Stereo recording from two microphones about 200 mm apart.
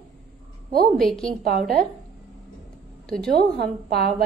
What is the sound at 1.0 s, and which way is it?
Speech, centre (ahead or behind).